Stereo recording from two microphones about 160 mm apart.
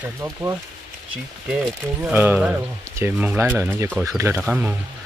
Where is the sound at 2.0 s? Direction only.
10° right (ahead or behind).